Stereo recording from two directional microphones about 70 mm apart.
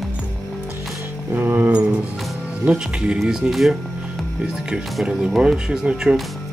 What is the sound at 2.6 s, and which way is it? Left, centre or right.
Speech, centre.